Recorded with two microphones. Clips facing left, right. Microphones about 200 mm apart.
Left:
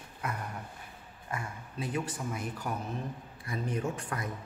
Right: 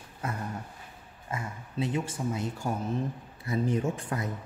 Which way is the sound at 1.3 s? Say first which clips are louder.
Right 3 dB; 20° right (ahead or behind).